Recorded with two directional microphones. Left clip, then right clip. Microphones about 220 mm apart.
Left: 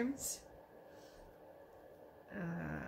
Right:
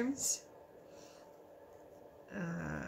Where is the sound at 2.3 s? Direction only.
15° right (ahead or behind).